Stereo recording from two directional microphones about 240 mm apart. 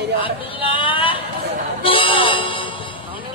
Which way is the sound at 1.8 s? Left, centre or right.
Left.